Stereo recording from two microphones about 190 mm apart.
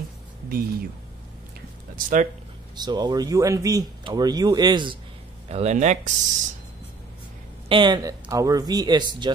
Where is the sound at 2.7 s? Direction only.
20° right (ahead or behind).